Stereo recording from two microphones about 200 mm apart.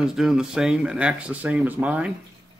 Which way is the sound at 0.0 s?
5° right (ahead or behind).